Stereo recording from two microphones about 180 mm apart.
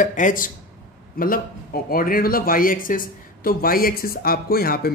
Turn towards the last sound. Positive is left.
turn(degrees=60)  # may be behind; listen again after turning